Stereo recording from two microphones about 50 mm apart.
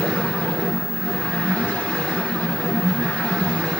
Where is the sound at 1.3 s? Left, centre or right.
Centre.